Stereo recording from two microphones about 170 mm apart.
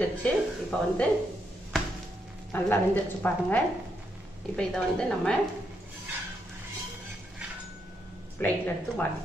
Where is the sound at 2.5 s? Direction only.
10° left (ahead or behind).